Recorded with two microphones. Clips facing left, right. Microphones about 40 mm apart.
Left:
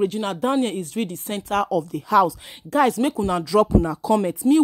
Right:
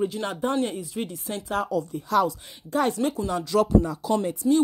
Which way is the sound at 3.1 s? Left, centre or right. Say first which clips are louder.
Left 5 dB; left.